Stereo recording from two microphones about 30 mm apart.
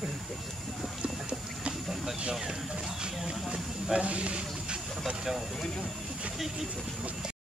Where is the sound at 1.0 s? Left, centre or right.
Right.